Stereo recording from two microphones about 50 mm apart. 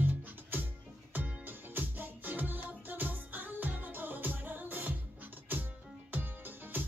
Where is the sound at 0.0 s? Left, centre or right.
Right.